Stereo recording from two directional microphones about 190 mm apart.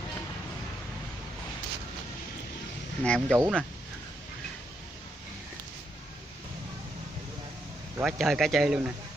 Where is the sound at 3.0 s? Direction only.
5° left (ahead or behind).